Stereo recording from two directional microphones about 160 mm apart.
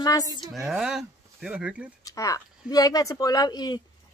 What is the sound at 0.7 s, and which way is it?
Speech, 5° right (ahead or behind).